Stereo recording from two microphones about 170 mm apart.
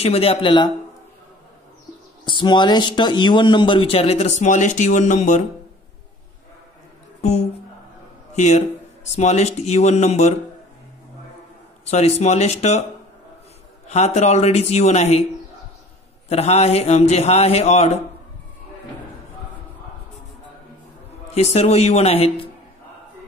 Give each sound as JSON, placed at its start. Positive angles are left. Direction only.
{"t": 0.0, "sound": "a man's voice", "side_deg": 35}
{"t": 2.2, "sound": "a man's voice", "side_deg": 25}
{"t": 7.2, "sound": "a man's voice", "side_deg": 40}
{"t": 11.8, "sound": "a man's voice", "side_deg": 40}
{"t": 13.8, "sound": "a man's voice", "side_deg": 40}
{"t": 16.3, "sound": "a man's voice", "side_deg": 40}
{"t": 21.3, "sound": "a man's voice", "side_deg": 40}